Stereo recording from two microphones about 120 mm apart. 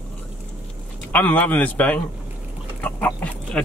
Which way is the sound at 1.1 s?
15° left (ahead or behind).